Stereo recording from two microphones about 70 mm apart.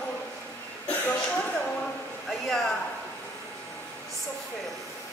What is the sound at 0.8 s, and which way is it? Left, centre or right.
Speech, centre.